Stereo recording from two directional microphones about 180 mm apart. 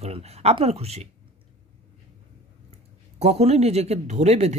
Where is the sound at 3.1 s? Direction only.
35° right (ahead or behind).